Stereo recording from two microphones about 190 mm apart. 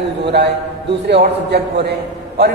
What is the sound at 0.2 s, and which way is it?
A man's voice, 60° right (ahead or behind).